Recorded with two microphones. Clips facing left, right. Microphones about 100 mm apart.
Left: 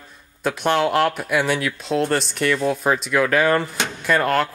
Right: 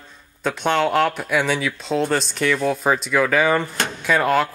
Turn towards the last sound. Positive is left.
turn(degrees=0)  # may be behind; listen again after turning